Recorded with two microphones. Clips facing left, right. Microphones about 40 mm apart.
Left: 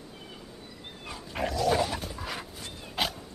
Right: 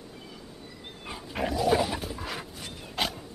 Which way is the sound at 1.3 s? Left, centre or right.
Centre.